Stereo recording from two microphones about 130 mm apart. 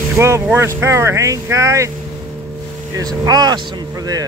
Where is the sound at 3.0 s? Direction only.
30° right (ahead or behind).